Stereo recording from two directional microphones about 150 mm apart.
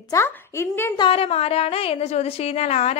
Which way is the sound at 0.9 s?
35° left (ahead or behind).